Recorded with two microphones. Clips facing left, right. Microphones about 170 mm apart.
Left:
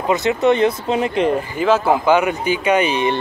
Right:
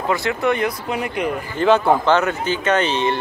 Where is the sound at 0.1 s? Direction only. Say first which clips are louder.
Left 5 dB; 20° left (ahead or behind).